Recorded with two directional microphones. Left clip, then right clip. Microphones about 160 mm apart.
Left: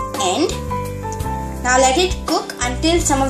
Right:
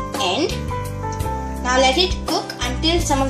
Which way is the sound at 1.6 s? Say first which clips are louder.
Left 2 dB; 15° left (ahead or behind).